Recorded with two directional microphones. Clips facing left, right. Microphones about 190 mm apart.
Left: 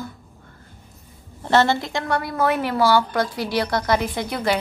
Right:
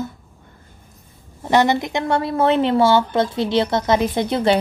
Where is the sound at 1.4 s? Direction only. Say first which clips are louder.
Right 2 dB; 15° right (ahead or behind).